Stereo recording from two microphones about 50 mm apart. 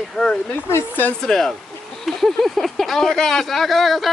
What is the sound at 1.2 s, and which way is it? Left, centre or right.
Speech, centre.